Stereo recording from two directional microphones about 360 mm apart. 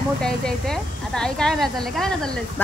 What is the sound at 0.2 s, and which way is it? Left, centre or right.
Speech, centre.